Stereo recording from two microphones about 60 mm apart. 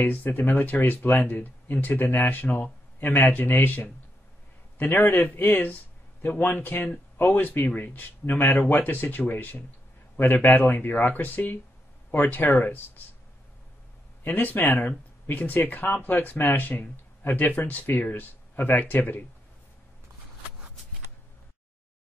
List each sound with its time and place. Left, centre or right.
0.0 s speech: left
14.2 s speech: left
16.6 s speech: left